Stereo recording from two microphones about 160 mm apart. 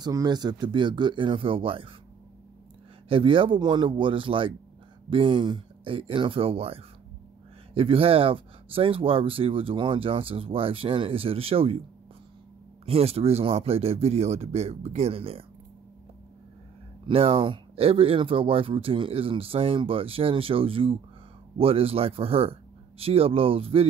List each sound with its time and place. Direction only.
0.0 s speech: 25° right (ahead or behind)
3.1 s speech: 35° right (ahead or behind)
12.8 s speech: 40° right (ahead or behind)
17.0 s speech: 35° right (ahead or behind)